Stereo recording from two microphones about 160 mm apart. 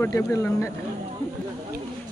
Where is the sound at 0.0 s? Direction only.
15° left (ahead or behind).